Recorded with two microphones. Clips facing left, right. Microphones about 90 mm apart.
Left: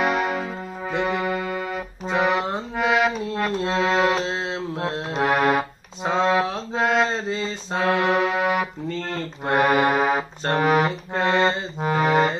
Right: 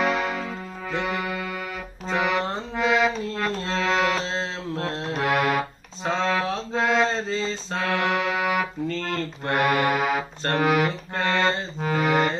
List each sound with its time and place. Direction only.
0.0 s music: 10° left (ahead or behind)
1.0 s brass instrument: 20° left (ahead or behind)
2.0 s music: 20° left (ahead or behind)
2.7 s music: 10° left (ahead or behind)
5.3 s music: 40° left (ahead or behind)
6.0 s mantra: 15° left (ahead or behind)
9.7 s music: 40° left (ahead or behind)
10.5 s music: 25° left (ahead or behind)